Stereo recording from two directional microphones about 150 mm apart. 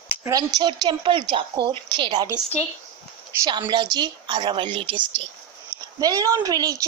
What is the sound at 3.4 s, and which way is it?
A woman's voice, 30° right (ahead or behind).